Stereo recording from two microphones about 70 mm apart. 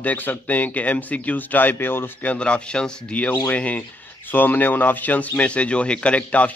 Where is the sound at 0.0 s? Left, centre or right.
Left.